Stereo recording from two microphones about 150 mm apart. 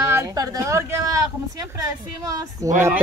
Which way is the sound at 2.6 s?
20° right (ahead or behind).